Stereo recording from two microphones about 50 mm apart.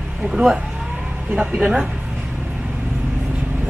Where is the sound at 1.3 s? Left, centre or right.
Right.